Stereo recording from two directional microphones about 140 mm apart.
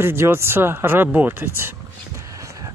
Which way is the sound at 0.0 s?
20° right (ahead or behind).